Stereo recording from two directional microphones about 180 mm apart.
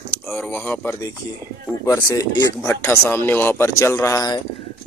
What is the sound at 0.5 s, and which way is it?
Speech, 10° left (ahead or behind).